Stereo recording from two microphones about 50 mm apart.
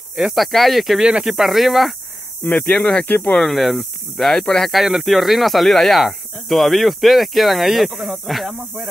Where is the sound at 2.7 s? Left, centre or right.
Centre.